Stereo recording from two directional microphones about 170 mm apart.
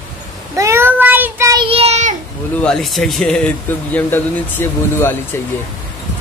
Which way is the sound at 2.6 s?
5° left (ahead or behind).